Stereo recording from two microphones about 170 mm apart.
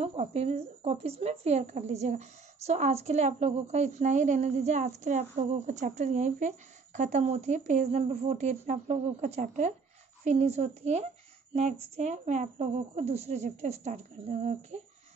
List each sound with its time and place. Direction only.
0.0 s a woman's voice: 40° right (ahead or behind)